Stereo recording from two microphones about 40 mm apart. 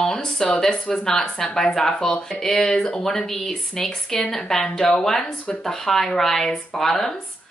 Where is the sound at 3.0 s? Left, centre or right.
Centre.